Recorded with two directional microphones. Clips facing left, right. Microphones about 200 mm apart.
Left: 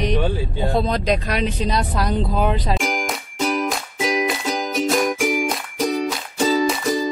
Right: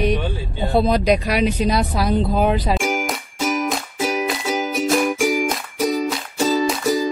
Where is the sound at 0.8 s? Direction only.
10° right (ahead or behind).